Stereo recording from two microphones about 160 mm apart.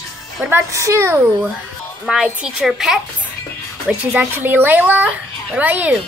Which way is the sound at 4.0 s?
10° right (ahead or behind).